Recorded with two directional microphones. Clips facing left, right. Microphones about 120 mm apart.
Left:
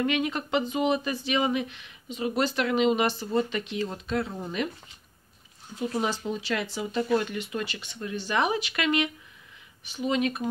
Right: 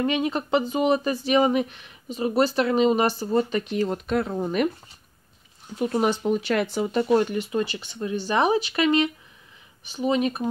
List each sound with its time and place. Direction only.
0.0 s speech: 30° right (ahead or behind); by 4.6 s 55° right (ahead or behind)
5.8 s speech: 60° right (ahead or behind)
7.0 s speech: 30° right (ahead or behind)